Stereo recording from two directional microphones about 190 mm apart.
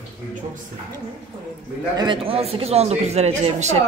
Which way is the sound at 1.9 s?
25° right (ahead or behind).